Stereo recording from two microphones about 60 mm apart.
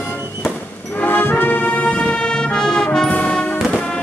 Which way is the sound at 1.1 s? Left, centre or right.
Left.